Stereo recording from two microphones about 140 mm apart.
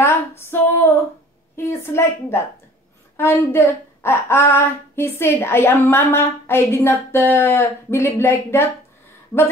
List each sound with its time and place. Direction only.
0.0 s female singing: 15° left (ahead or behind)
1.6 s speech: 15° left (ahead or behind)